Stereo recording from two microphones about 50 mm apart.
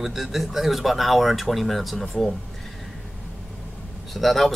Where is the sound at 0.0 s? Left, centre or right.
Centre.